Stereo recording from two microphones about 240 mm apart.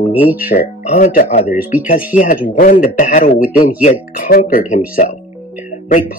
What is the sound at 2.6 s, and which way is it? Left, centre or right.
Speech, left.